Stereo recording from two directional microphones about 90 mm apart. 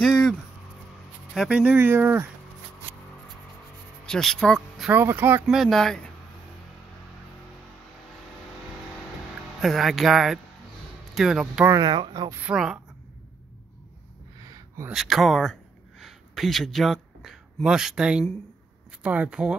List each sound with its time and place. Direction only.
0.0 s vehicle: 5° left (ahead or behind)
1.3 s speech: 5° right (ahead or behind)
1.6 s speech: 20° right (ahead or behind)
4.0 s speech: 5° left (ahead or behind)
4.9 s speech: 20° right (ahead or behind)
5.5 s speech: centre (ahead or behind)
9.6 s speech: centre (ahead or behind)
11.8 s speech: 60° right (ahead or behind)
12.5 s speech: 5° right (ahead or behind)
14.4 s a sound: 40° right (ahead or behind)
14.9 s speech: centre (ahead or behind)